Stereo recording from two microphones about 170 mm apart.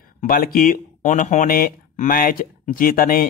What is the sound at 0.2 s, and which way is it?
Speech, 60° left (ahead or behind).